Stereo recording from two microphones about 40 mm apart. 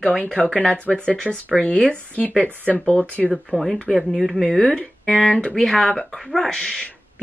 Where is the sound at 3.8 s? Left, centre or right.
Left.